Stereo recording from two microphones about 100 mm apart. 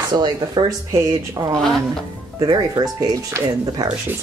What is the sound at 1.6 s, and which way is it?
Speech, 5° left (ahead or behind).